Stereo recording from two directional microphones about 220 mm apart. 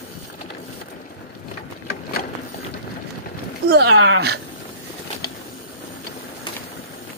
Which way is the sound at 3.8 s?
60° right (ahead or behind).